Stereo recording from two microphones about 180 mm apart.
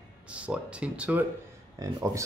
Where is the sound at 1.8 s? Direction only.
20° right (ahead or behind).